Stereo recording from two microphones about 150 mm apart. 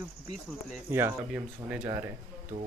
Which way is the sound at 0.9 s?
15° right (ahead or behind).